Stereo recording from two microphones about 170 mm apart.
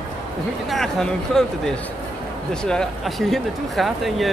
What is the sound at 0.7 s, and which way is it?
Speech, centre (ahead or behind).